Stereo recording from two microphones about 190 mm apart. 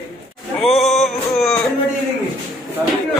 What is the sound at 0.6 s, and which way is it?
A man's voice, centre (ahead or behind).